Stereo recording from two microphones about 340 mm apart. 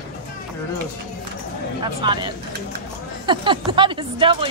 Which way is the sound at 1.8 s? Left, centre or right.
Centre.